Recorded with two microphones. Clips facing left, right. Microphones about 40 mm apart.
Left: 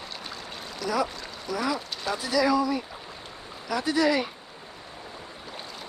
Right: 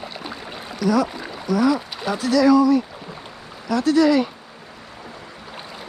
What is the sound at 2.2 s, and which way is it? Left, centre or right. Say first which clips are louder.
Speech: right 9 dB; centre.